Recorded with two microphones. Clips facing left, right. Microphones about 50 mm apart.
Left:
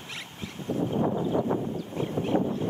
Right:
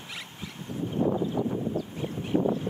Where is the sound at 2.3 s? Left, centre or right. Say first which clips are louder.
Right 1 dB; left.